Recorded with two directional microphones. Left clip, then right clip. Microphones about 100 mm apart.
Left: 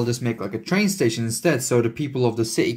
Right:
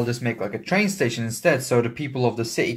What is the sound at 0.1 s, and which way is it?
Speech, 35° left (ahead or behind).